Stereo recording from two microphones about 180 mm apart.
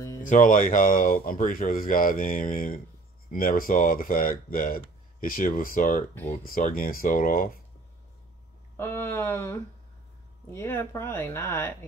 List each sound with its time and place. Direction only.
0.2 s speech: 45° left (ahead or behind)
8.7 s speech: 15° left (ahead or behind)